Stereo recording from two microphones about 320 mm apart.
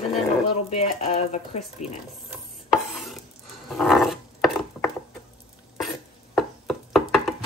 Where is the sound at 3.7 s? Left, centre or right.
Centre.